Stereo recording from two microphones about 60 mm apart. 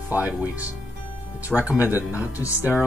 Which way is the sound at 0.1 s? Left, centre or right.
Right.